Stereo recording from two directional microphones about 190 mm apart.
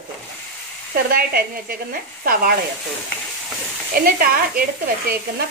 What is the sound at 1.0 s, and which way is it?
A woman's voice, 50° right (ahead or behind).